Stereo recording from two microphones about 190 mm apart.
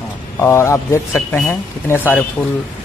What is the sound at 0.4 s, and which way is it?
A man's voice, 15° left (ahead or behind).